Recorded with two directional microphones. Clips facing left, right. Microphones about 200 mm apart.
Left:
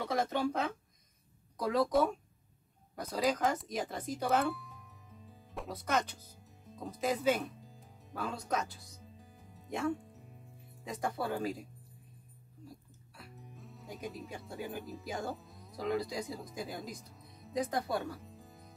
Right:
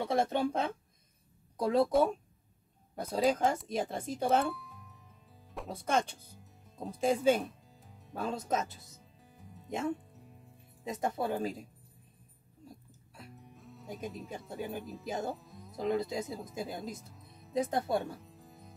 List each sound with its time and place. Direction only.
0.0 s speech: 25° right (ahead or behind)
3.0 s speech: 25° right (ahead or behind)
4.6 s music: centre (ahead or behind)
5.7 s speech: 30° right (ahead or behind)
8.9 s music: centre (ahead or behind)
9.7 s speech: 20° right (ahead or behind)
12.6 s music: 20° right (ahead or behind)
13.6 s music: centre (ahead or behind)
14.5 s speech: 20° right (ahead or behind)
15.3 s music: centre (ahead or behind)
15.7 s speech: 20° right (ahead or behind)
16.9 s music: centre (ahead or behind)
17.6 s speech: 25° right (ahead or behind)
18.2 s music: centre (ahead or behind)